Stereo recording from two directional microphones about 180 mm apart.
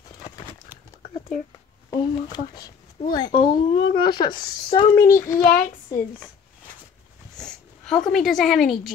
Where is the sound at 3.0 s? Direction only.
50° left (ahead or behind).